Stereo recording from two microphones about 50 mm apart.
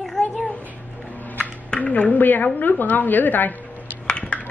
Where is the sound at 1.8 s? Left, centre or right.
Left.